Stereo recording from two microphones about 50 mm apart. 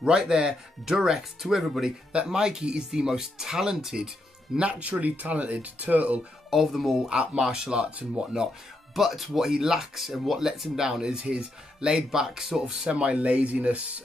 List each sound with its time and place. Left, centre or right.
0.1 s speech: centre
4.6 s speech: right
6.5 s speech: centre
8.9 s speech: centre
12.9 s speech: right